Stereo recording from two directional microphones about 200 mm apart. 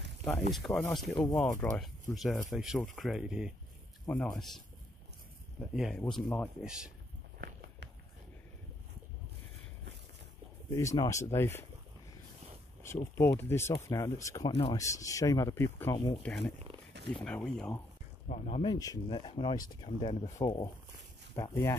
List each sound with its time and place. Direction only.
0.2 s speech: 5° left (ahead or behind)
7.3 s walk: 55° right (ahead or behind)
10.7 s speech: 15° left (ahead or behind)
12.8 s speech: 15° left (ahead or behind)
18.3 s speech: 30° left (ahead or behind); by 21.7 s 15° left (ahead or behind)